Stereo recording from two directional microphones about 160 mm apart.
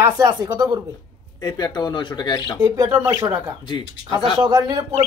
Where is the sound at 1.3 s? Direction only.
25° left (ahead or behind).